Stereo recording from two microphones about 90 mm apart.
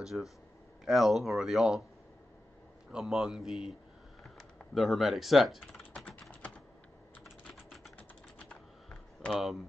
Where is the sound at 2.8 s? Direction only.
5° right (ahead or behind).